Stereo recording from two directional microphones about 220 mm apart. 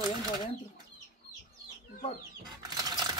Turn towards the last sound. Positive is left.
turn(degrees=-15)  # may be behind; listen again after turning